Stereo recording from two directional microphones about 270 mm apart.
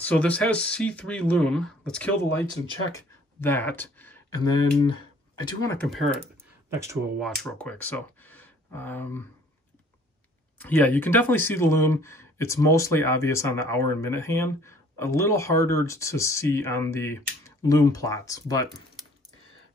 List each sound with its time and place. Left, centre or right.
0.0 s speech: centre
5.6 s speech: centre
6.7 s speech: centre
7.2 s speech: centre
10.6 s speech: centre